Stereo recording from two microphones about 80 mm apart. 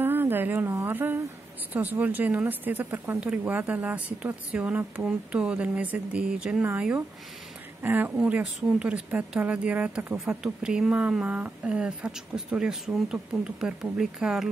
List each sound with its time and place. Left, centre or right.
0.0 s a sound: right
0.8 s a woman's voice: right
7.8 s speech: right
8.2 s a woman's voice: centre